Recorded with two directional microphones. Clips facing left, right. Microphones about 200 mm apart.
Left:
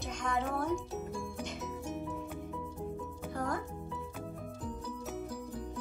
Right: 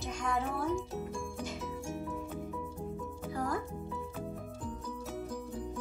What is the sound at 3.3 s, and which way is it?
Music, centre (ahead or behind).